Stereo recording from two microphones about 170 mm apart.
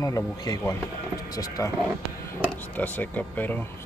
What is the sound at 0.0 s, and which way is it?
Speech, 20° left (ahead or behind).